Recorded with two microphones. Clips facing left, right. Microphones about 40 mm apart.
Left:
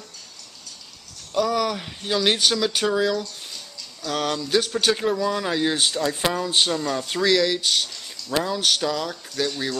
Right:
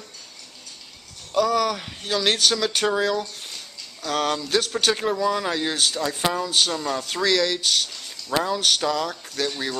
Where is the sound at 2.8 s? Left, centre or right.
Centre.